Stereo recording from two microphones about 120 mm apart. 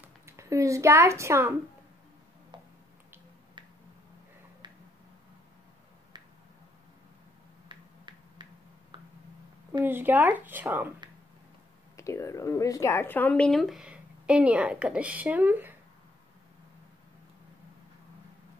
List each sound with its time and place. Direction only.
0.0 s speech: 25° right (ahead or behind)
7.6 s dog: 40° right (ahead or behind)
9.8 s speech: 15° right (ahead or behind)
12.0 s speech: 25° left (ahead or behind); by 15.7 s 15° right (ahead or behind)